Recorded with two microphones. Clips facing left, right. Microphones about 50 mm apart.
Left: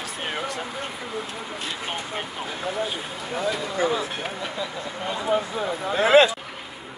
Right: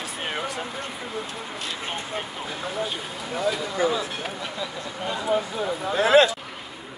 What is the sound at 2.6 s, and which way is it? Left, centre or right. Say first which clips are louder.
Speech: left 2 dB; centre.